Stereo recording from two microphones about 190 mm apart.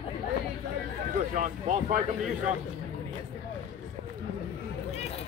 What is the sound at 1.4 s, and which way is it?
Speech, 40° right (ahead or behind).